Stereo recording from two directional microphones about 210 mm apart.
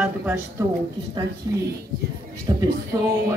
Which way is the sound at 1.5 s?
15° right (ahead or behind).